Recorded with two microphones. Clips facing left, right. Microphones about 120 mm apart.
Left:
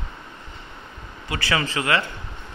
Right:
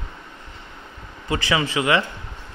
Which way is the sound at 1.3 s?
20° right (ahead or behind).